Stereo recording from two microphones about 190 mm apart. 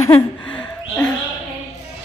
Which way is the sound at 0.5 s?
5° left (ahead or behind).